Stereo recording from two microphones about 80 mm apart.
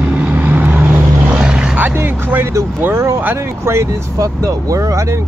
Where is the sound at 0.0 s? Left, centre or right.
Centre.